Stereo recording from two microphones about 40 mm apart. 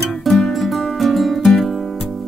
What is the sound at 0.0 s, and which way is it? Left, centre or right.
Music, centre.